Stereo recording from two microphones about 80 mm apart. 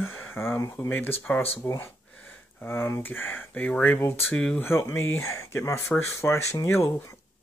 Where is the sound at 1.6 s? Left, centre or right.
Left.